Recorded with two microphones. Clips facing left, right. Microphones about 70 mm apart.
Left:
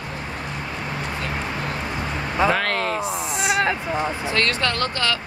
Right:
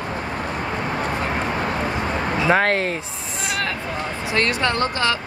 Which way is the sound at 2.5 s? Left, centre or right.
Right.